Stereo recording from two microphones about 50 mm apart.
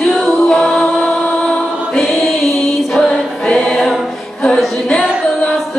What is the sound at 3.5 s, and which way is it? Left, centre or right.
Choir, centre.